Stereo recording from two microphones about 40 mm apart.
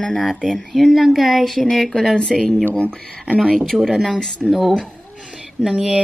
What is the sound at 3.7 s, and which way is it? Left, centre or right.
Speech, centre.